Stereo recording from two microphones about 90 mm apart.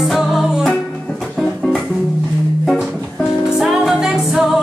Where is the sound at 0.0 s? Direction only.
Centre (ahead or behind).